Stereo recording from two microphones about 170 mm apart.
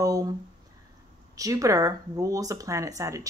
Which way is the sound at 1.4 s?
20° right (ahead or behind).